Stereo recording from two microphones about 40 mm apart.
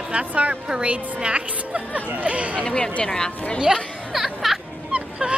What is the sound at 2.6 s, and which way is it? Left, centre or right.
Speech, left.